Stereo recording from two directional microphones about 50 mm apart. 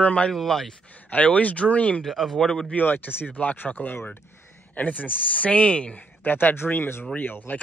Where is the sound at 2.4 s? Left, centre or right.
Centre.